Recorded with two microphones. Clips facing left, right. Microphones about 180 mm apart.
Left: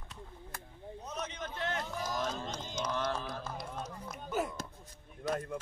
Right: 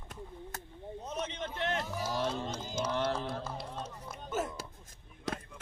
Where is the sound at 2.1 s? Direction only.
30° right (ahead or behind).